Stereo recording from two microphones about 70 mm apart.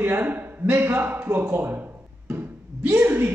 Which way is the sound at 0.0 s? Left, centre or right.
Right.